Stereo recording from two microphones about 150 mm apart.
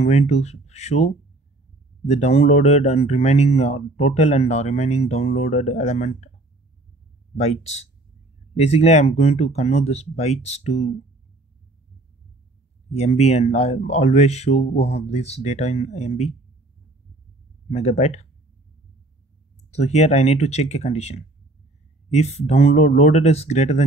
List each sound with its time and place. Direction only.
0.0 s speech: 45° left (ahead or behind)
7.3 s speech: 50° left (ahead or behind)
12.9 s speech: 45° left (ahead or behind)
17.6 s speech: 45° left (ahead or behind)
19.7 s speech: 45° left (ahead or behind)